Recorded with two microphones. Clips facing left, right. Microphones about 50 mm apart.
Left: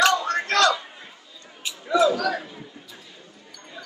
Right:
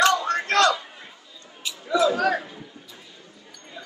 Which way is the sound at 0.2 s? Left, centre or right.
Right.